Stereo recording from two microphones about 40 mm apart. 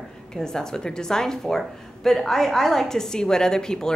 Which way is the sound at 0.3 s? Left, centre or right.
Centre.